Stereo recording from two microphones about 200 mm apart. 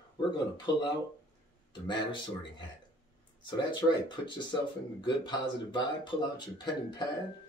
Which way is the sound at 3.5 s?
25° left (ahead or behind).